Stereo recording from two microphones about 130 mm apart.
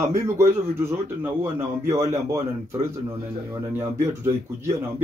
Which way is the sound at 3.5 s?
15° right (ahead or behind).